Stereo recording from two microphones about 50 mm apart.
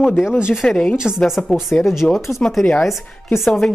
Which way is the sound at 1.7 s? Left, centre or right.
Centre.